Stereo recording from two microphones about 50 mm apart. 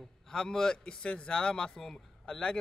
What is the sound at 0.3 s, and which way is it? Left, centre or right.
A man's voice, centre.